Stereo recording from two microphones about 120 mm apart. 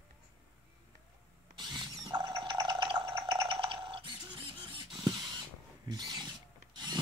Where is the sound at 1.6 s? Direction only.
35° right (ahead or behind).